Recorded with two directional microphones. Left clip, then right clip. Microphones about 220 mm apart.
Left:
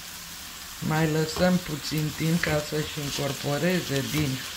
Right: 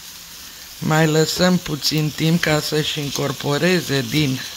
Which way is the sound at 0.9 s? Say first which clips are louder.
Right 9 dB; 55° right (ahead or behind).